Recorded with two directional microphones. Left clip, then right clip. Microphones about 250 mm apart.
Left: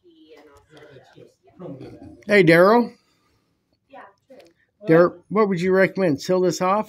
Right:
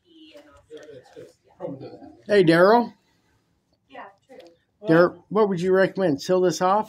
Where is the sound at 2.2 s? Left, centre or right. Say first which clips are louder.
Left 2 dB; left.